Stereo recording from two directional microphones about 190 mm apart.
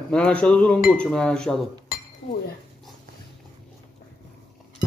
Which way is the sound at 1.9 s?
50° left (ahead or behind).